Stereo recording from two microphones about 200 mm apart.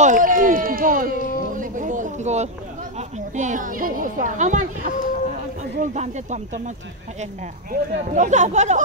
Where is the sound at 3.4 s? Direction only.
40° right (ahead or behind).